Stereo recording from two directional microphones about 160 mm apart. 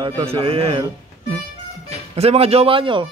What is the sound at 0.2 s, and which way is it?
Speech, 35° right (ahead or behind).